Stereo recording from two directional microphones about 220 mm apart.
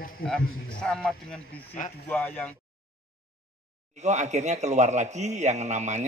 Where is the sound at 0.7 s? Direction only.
5° left (ahead or behind).